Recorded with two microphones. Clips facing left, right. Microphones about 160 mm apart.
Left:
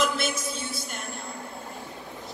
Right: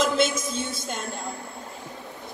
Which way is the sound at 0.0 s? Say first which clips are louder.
Right 4 dB; 90° right.